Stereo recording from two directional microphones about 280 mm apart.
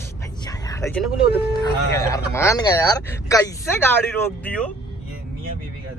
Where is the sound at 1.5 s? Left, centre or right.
Centre.